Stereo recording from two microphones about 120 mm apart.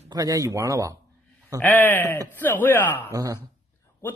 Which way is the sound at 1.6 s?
15° left (ahead or behind).